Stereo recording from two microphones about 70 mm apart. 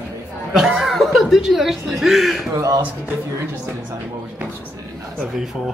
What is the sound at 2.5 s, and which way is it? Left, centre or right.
Speech, right.